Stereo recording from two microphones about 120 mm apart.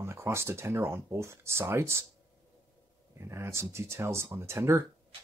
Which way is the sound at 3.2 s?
20° right (ahead or behind).